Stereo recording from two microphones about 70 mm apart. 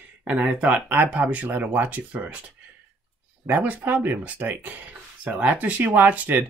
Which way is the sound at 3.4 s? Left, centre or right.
Right.